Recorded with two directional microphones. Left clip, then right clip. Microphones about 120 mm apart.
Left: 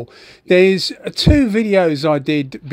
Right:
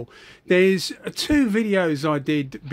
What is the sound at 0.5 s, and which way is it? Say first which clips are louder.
Speech: left 6 dB; 30° left (ahead or behind).